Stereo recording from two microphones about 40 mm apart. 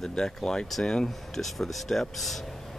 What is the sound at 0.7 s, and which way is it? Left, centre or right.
Speech, centre.